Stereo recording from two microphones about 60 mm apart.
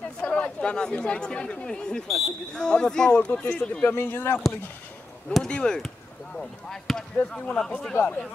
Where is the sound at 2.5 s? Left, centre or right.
Centre.